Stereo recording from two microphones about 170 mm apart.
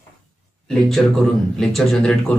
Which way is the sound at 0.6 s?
5° left (ahead or behind).